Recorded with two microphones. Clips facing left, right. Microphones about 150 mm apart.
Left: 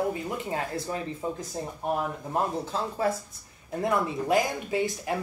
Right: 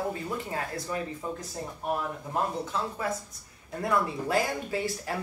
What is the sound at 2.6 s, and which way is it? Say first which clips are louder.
Speech: left 4 dB; 30° left (ahead or behind).